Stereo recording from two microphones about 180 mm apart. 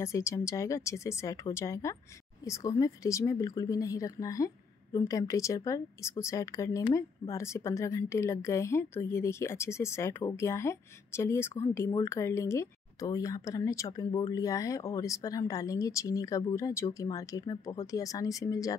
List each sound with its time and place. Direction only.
0.0 s speech: 15° left (ahead or behind)